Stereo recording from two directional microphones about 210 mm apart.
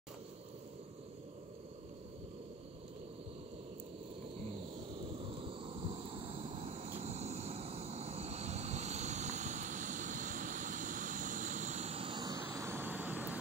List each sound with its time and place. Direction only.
5.2 s vehicle: 25° right (ahead or behind); by 13.4 s 10° right (ahead or behind)